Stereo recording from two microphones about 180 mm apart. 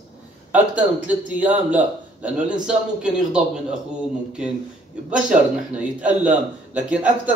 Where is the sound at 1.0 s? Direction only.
10° right (ahead or behind).